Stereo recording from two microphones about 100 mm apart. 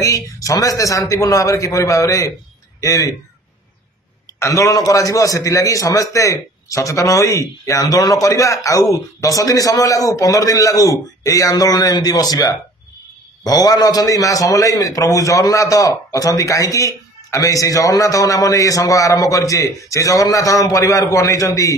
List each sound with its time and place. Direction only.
0.0 s a man's voice: 35° left (ahead or behind)
4.4 s a man's voice: 30° left (ahead or behind)